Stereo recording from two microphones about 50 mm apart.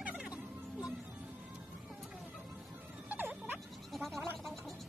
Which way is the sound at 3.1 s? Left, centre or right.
Right.